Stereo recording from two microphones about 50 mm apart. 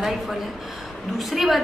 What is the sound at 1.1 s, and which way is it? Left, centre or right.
Speech, centre.